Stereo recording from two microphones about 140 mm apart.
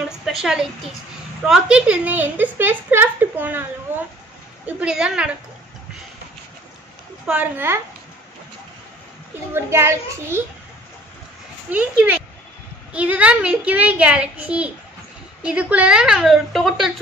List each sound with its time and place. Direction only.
0.2 s a woman's voice: 5° right (ahead or behind)
4.6 s a woman's voice: 10° right (ahead or behind)
7.2 s a woman's voice: 10° right (ahead or behind)
9.5 s a child's voice: 20° right (ahead or behind)
11.7 s a woman's voice: 10° right (ahead or behind)